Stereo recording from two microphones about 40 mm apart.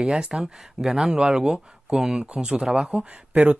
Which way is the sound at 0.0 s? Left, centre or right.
Centre.